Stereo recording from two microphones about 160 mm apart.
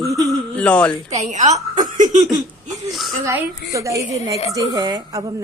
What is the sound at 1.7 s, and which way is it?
Chuckle, 50° right (ahead or behind).